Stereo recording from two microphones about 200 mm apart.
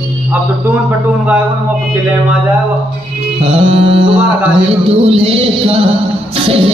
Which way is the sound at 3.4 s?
30° right (ahead or behind).